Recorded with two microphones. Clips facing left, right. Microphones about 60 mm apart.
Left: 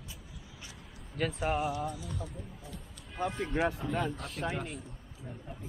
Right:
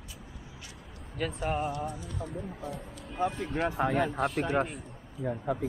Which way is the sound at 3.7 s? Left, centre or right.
Right.